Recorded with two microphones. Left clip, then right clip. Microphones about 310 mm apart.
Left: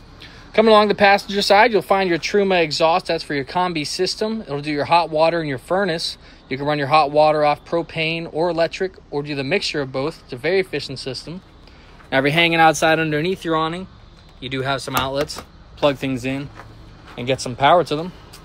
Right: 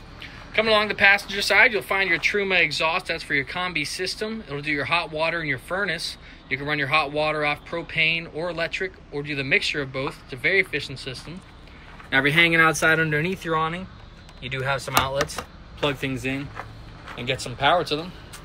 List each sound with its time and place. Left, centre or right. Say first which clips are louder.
0.6 s speech: left 6 dB; centre